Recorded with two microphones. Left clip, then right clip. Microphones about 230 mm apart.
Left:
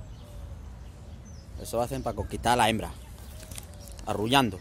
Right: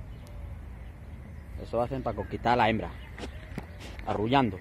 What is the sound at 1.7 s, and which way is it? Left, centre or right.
Speech, left.